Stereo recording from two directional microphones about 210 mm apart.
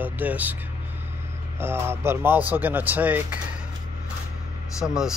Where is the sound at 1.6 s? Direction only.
10° right (ahead or behind).